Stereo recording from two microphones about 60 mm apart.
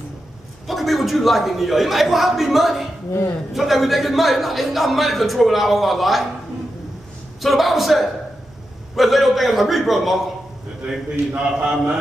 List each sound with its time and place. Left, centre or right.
0.7 s a man's voice: centre
7.4 s a man's voice: centre
10.9 s a man's voice: centre